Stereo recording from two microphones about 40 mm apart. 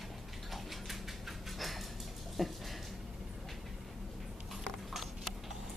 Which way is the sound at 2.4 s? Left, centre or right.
Centre.